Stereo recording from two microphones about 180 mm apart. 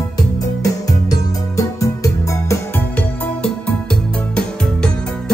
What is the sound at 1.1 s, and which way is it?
Music, 20° left (ahead or behind).